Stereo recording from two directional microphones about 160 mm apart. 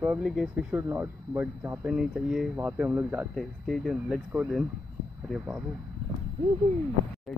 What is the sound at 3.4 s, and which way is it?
Speech, centre (ahead or behind).